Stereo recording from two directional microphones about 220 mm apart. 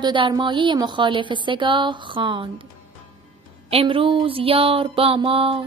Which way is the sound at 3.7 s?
25° right (ahead or behind).